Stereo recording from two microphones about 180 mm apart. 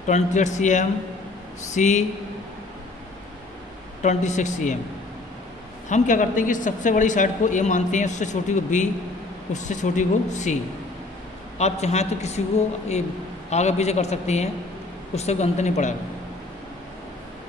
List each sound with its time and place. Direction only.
0.0 s speech: 40° left (ahead or behind)
4.0 s speech: 40° left (ahead or behind)
5.9 s a woman's voice: 45° left (ahead or behind)
13.5 s speech: 40° left (ahead or behind)